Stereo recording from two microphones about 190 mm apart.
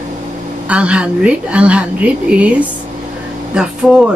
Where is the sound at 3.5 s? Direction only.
5° right (ahead or behind).